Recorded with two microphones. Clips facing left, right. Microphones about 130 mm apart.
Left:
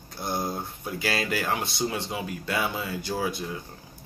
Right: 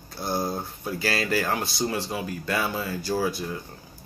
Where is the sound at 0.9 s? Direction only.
20° left (ahead or behind).